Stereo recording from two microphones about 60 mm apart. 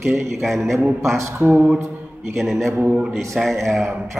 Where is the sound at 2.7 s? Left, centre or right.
Right.